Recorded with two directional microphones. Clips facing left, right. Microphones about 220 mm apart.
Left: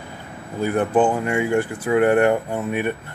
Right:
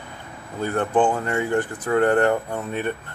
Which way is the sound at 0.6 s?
10° left (ahead or behind).